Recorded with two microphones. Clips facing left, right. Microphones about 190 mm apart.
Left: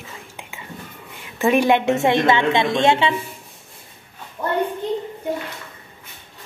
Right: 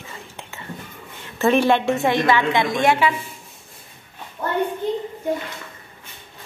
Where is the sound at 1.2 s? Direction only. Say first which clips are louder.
Even; 15° left (ahead or behind).